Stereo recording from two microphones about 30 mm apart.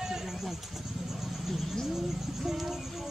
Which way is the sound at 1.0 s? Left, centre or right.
Centre.